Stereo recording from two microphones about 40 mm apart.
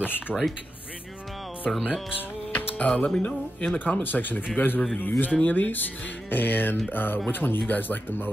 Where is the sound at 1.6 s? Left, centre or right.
Centre.